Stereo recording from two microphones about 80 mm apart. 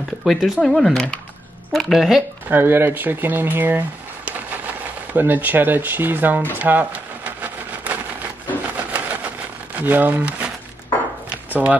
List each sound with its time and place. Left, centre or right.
0.2 s speech: centre
2.5 s speech: right
5.1 s speech: right
6.5 s a sound: right
8.9 s vehicle: centre
9.8 s speech: right
11.5 s speech: centre